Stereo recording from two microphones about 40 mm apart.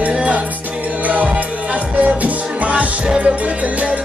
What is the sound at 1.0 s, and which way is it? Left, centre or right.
Music, right.